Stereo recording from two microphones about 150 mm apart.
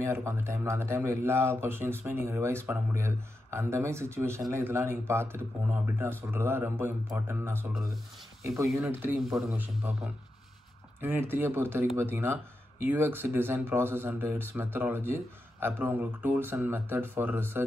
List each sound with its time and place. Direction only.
0.0 s speech: 15° right (ahead or behind)
8.8 s speech: 15° right (ahead or behind)
9.2 s a man's voice: centre (ahead or behind)
11.0 s speech: 15° right (ahead or behind)